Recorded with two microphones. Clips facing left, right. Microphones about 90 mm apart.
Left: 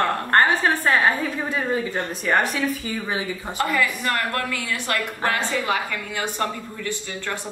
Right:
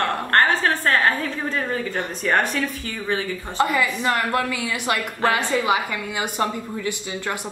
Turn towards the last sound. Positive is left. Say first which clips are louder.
# right 2 dB
turn(degrees=-15)  # may be behind; listen again after turning